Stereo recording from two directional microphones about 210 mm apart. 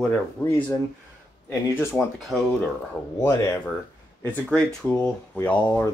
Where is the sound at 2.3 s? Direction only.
Centre (ahead or behind).